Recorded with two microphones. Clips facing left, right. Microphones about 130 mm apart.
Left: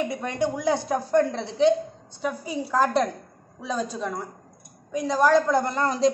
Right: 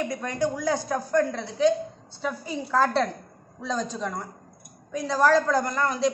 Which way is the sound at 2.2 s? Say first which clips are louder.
Left 2 dB; 10° left (ahead or behind).